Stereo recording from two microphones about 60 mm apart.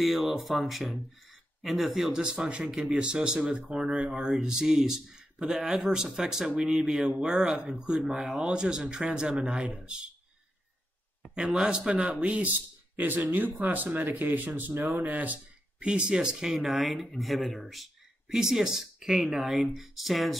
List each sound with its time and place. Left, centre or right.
0.0 s speech: centre
11.3 s speech: centre
15.8 s speech: centre